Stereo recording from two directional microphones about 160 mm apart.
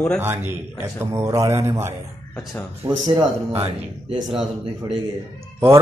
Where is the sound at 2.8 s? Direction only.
25° right (ahead or behind).